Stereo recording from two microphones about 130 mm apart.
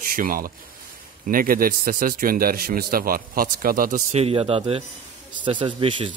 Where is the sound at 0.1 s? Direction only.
90° right.